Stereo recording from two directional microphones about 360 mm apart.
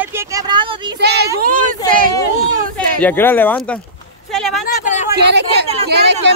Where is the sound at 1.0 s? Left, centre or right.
Right.